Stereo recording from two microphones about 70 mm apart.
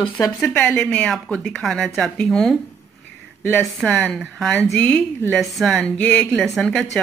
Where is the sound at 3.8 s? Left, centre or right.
Centre.